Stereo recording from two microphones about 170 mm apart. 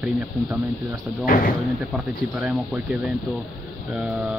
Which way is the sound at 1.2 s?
55° left (ahead or behind).